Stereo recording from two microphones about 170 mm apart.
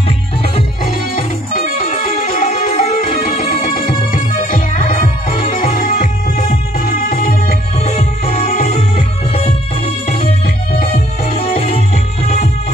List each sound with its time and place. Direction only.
1.1 s music: 55° left (ahead or behind)
2.5 s music: 40° left (ahead or behind)
3.3 s music: 60° left (ahead or behind)
7.8 s music: 40° left (ahead or behind)
11.3 s music: 35° left (ahead or behind)